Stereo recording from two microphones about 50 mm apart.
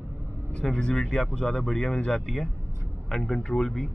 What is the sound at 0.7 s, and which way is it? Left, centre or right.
Speech, centre.